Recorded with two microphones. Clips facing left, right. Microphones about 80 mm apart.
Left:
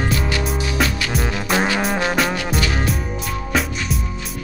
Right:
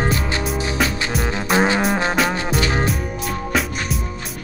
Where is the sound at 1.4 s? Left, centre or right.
Right.